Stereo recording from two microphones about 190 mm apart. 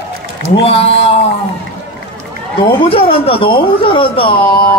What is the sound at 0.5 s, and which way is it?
Speech, 30° left (ahead or behind).